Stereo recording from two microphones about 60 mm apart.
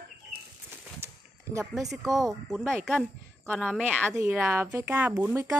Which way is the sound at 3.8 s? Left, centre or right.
Right.